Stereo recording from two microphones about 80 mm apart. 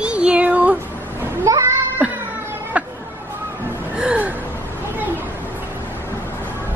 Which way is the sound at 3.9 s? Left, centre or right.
Centre.